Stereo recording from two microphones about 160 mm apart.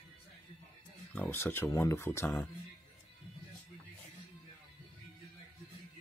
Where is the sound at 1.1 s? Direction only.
10° left (ahead or behind).